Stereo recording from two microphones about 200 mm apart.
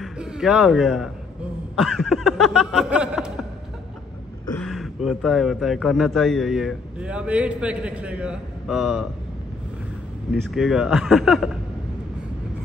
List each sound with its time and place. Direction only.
0.0 s a man's voice: 5° right (ahead or behind)
4.5 s speech: 5° left (ahead or behind)
10.5 s speech: centre (ahead or behind)